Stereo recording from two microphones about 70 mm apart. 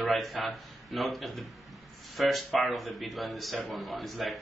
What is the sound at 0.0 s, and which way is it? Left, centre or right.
A man's voice, centre.